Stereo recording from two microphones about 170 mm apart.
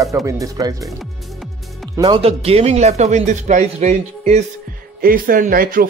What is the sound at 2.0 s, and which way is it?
Speech, 35° right (ahead or behind).